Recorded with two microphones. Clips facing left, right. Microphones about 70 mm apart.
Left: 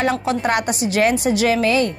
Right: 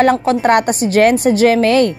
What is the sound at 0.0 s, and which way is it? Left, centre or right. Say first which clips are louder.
A woman's voice: right 7 dB; right.